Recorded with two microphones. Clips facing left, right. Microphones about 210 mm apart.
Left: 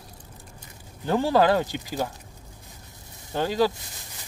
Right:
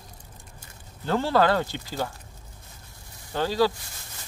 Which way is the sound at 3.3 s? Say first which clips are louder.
Even; 15° left (ahead or behind).